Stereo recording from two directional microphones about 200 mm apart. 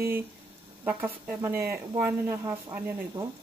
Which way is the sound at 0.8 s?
10° right (ahead or behind).